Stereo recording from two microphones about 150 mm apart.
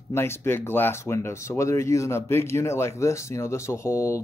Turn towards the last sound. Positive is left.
turn(degrees=20)  # may be behind; listen again after turning